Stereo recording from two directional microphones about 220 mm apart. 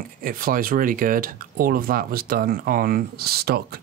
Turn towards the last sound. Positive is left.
turn(degrees=-45)  # may be behind; listen again after turning